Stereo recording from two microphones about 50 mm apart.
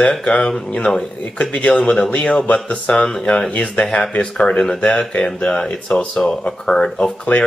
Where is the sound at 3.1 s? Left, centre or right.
Centre.